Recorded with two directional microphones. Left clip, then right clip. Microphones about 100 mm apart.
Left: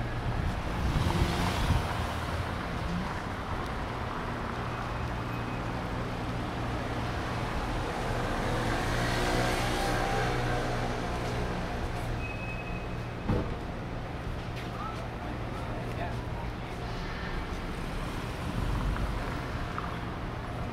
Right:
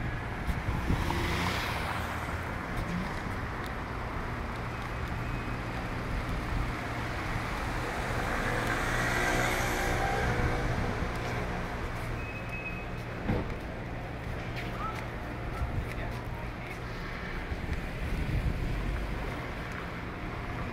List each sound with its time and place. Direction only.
1.2 s vehicle: centre (ahead or behind)
9.1 s vehicle: 15° right (ahead or behind)